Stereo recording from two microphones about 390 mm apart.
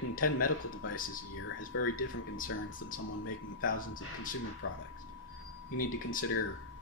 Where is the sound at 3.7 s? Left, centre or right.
Left.